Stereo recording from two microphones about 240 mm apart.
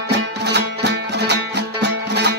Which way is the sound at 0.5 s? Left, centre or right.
Right.